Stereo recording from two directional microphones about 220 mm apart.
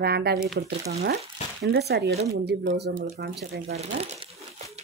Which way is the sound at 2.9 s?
40° right (ahead or behind).